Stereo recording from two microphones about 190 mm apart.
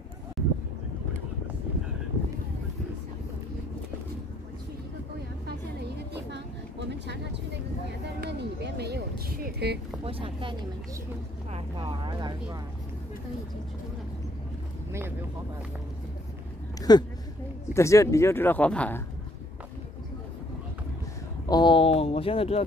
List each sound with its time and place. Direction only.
5.8 s a sound: 60° right (ahead or behind)
8.2 s speech: 60° right (ahead or behind)
10.0 s speech: 30° right (ahead or behind)
11.5 s speech: 25° right (ahead or behind)
14.9 s speech: 15° right (ahead or behind)
16.9 s speech: 20° left (ahead or behind)
21.5 s speech: 25° left (ahead or behind)